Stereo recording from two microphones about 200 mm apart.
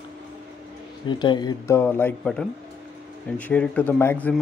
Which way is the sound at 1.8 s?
10° left (ahead or behind).